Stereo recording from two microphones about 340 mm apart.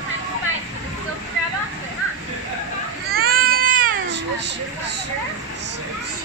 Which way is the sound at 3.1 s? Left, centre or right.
Right.